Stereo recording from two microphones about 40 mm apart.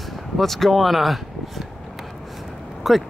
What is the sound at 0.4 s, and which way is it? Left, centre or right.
Speech, centre.